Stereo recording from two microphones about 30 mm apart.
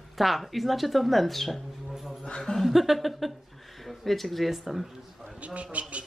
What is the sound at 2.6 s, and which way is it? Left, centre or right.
A man's voice, centre.